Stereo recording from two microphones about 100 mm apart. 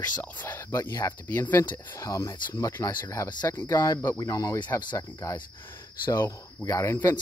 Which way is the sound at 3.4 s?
25° left (ahead or behind).